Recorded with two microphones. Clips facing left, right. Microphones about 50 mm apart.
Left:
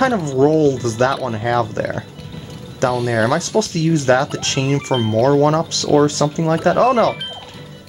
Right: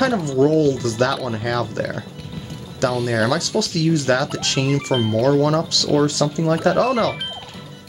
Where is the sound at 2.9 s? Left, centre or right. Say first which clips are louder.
Left 3 dB; centre.